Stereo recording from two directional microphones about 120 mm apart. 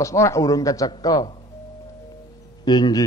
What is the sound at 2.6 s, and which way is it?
Speech, 35° left (ahead or behind).